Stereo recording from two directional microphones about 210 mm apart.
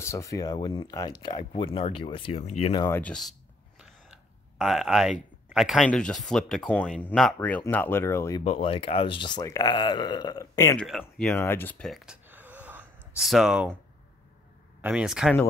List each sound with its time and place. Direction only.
0.0 s speech: 15° left (ahead or behind)
3.0 s a sound: centre (ahead or behind)
5.5 s speech: centre (ahead or behind)
8.5 s speech: 25° left (ahead or behind)
10.9 s speech: centre (ahead or behind)
14.8 s speech: 5° right (ahead or behind)